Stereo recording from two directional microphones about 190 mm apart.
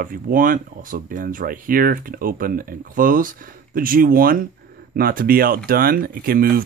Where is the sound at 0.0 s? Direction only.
45° right (ahead or behind).